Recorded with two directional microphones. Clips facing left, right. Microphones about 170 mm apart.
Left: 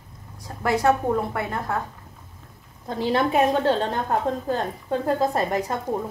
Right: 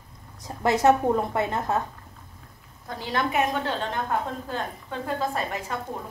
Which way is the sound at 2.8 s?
25° left (ahead or behind).